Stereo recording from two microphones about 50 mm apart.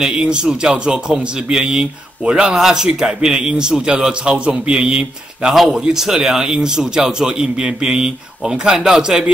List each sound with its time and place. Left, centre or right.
0.0 s a man's voice: centre